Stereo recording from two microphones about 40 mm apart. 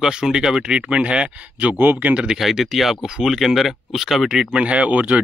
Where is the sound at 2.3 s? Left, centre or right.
Centre.